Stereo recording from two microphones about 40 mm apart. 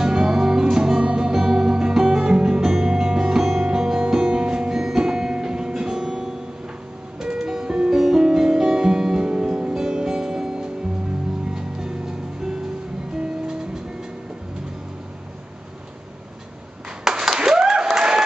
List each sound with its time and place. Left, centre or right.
0.0 s music: centre
9.3 s music: right
17.0 s a sound: centre
17.8 s applause: centre